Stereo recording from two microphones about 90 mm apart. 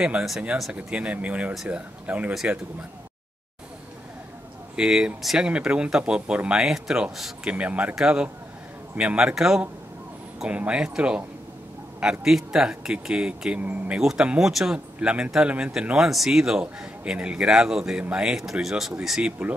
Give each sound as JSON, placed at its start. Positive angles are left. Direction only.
{"t": 0.7, "sound": "speech", "side_deg": -15}
{"t": 4.7, "sound": "speech", "side_deg": -10}